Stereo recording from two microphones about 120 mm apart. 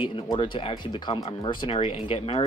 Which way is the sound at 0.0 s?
45° left (ahead or behind).